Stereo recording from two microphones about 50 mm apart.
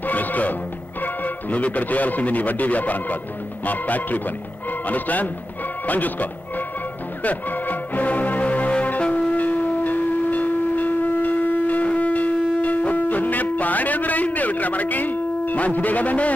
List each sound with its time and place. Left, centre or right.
0.0 s music: left
1.0 s a man's voice: left
7.2 s music: left
9.3 s shofar: left